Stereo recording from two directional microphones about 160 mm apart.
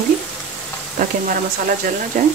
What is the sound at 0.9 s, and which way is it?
Speech, 55° right (ahead or behind).